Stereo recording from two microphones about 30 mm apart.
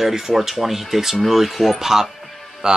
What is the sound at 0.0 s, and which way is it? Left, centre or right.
Speech, centre.